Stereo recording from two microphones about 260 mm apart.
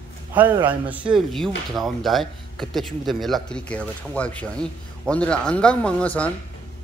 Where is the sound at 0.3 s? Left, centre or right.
Centre.